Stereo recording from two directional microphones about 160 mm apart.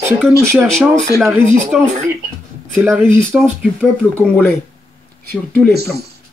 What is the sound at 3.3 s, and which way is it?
Speech, 5° right (ahead or behind).